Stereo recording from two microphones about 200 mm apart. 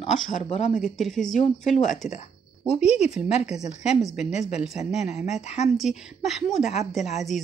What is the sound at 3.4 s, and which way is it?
Speech, 35° left (ahead or behind).